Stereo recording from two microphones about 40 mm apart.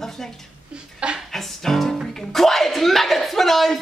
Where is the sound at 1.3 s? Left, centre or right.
Centre.